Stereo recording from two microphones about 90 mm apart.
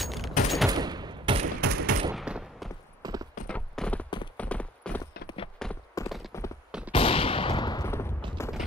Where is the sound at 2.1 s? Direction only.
5° right (ahead or behind).